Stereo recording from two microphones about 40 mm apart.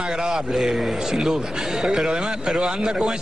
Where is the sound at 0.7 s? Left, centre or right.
Centre.